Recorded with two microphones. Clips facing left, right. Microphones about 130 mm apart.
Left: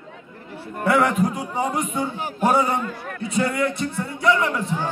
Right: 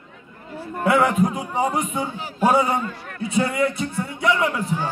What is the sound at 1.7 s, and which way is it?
Speech, 5° right (ahead or behind).